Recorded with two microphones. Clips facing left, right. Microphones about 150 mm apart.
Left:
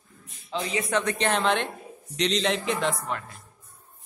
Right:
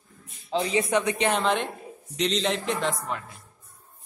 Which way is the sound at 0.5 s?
30° right (ahead or behind).